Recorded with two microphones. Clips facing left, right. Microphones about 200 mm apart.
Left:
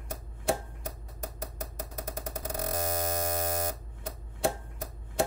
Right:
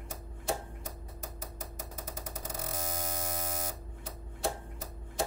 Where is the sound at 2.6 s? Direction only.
60° left (ahead or behind).